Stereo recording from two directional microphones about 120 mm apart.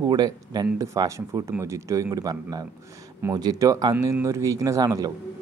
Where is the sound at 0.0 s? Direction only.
35° right (ahead or behind).